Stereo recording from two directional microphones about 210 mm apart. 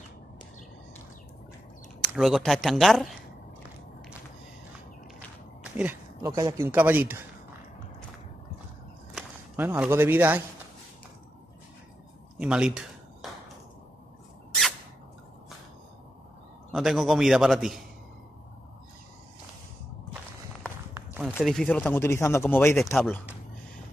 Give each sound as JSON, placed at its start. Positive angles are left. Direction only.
{"t": 2.1, "sound": "a man's voice", "side_deg": 0}
{"t": 5.6, "sound": "a sound", "side_deg": -5}
{"t": 6.2, "sound": "speech", "side_deg": -15}
{"t": 9.1, "sound": "speech", "side_deg": -10}
{"t": 12.4, "sound": "a sound", "side_deg": -5}
{"t": 16.7, "sound": "a man's voice", "side_deg": 0}
{"t": 20.9, "sound": "a sound", "side_deg": -10}
{"t": 21.5, "sound": "speech", "side_deg": 5}
{"t": 22.9, "sound": "a man's voice", "side_deg": 0}